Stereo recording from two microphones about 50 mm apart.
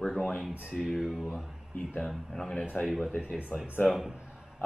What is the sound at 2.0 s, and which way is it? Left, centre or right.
Speech, centre.